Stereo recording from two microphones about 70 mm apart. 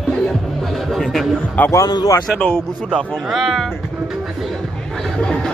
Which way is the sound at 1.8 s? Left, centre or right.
Left.